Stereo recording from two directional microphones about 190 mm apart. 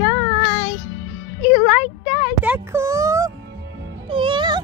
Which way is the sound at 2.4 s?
10° right (ahead or behind).